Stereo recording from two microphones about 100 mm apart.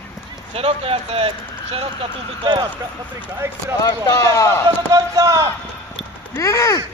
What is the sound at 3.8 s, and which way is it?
Speech, 35° left (ahead or behind).